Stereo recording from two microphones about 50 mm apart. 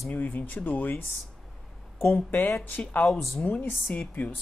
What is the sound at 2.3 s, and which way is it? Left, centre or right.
Speech, left.